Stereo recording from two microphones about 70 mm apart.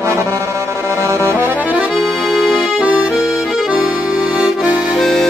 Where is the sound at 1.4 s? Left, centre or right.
Right.